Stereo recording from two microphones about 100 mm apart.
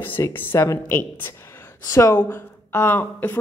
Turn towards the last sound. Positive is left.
turn(degrees=20)  # may be behind; listen again after turning